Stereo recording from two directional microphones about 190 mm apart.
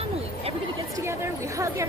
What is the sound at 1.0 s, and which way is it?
Speech, 15° right (ahead or behind).